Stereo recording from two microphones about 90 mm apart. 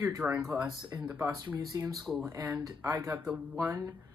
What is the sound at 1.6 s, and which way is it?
Speech, 45° right (ahead or behind).